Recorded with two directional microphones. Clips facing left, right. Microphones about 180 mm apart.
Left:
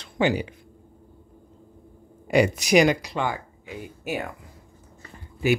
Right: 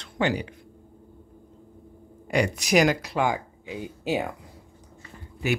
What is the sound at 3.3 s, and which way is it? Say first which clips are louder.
Speech: right 3 dB; 15° right (ahead or behind).